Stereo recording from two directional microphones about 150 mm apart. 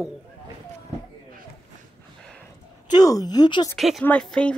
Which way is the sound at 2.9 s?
25° left (ahead or behind).